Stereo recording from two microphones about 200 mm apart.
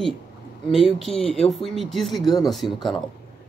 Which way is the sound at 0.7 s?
Centre (ahead or behind).